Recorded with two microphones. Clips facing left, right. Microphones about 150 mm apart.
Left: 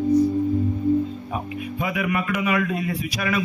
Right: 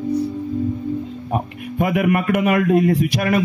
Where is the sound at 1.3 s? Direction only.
50° right (ahead or behind).